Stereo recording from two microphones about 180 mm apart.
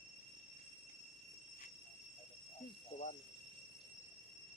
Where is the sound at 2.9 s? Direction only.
35° left (ahead or behind).